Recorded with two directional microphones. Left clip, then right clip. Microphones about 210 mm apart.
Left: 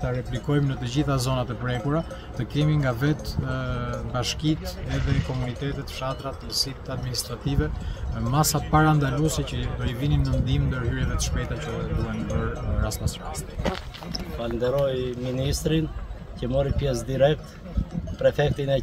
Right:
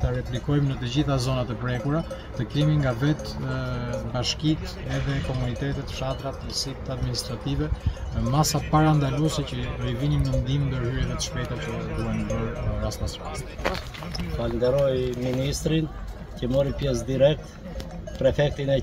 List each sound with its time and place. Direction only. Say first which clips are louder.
0.5 s speech: left 1 dB; 5° left (ahead or behind)
5.9 s speech: even; 5° left (ahead or behind)
14.4 s speech: right 2 dB; 20° left (ahead or behind)